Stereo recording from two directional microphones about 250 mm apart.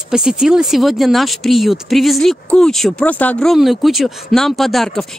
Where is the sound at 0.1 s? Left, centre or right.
Centre.